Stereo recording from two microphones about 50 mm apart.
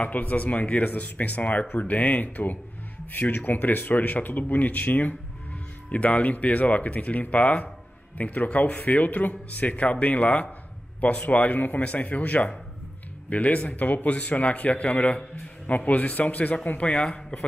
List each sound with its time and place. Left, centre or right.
0.0 s a man's voice: left